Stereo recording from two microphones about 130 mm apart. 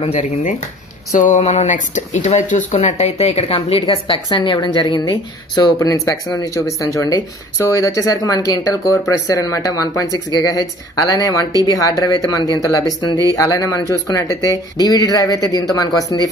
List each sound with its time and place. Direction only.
0.0 s speech: 50° left (ahead or behind)
1.1 s speech: 90° left
1.4 s speech: 55° left (ahead or behind); by 16.2 s 25° left (ahead or behind)